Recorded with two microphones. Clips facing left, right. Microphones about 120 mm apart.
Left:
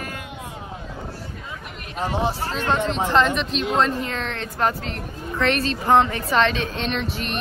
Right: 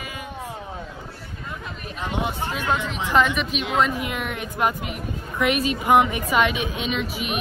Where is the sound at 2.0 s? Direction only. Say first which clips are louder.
Left 4 dB; 35° left (ahead or behind).